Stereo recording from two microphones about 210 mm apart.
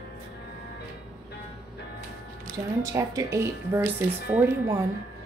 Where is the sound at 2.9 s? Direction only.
15° right (ahead or behind).